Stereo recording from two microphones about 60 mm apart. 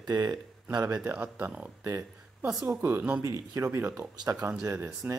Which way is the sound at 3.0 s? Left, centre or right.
Right.